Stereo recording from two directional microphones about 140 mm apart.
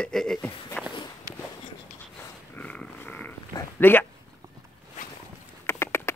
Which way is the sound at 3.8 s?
15° left (ahead or behind).